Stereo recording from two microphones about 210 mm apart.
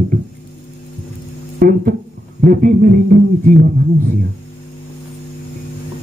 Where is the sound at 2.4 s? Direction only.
40° right (ahead or behind).